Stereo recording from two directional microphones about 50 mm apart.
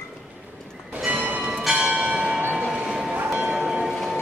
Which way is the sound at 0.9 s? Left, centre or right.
Right.